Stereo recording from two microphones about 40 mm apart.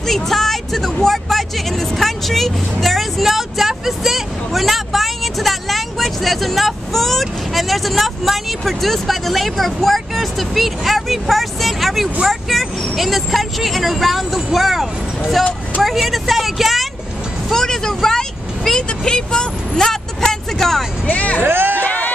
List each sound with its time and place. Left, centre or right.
0.0 s vehicle: centre
1.0 s speech: centre
15.8 s vehicle: centre
17.5 s vehicle: centre
21.1 s music: left
21.4 s music: right
21.8 s music: left